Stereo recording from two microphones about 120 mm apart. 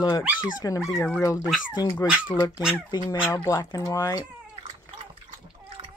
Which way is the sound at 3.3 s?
25° left (ahead or behind).